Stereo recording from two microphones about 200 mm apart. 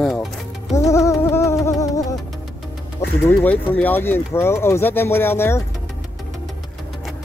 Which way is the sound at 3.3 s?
10° left (ahead or behind).